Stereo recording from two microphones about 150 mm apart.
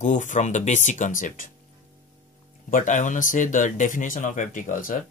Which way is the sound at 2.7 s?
60° left (ahead or behind).